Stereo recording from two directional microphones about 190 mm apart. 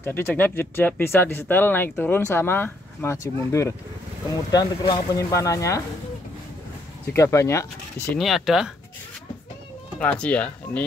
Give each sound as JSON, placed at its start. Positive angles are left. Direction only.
{"t": 0.0, "sound": "speech", "side_deg": 10}
{"t": 7.1, "sound": "speech", "side_deg": 15}
{"t": 8.2, "sound": "speech", "side_deg": 0}
{"t": 9.9, "sound": "speech", "side_deg": 5}